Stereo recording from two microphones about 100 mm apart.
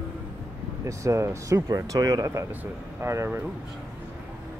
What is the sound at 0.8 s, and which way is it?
Speech, 30° right (ahead or behind).